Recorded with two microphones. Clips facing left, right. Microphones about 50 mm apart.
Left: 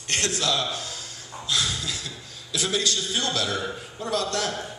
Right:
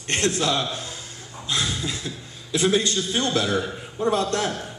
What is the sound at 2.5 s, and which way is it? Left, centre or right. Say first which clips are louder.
A man's voice: right 5 dB; right.